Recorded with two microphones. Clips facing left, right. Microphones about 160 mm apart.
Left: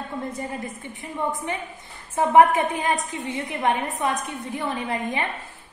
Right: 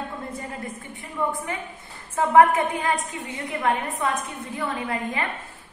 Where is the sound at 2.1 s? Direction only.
20° left (ahead or behind).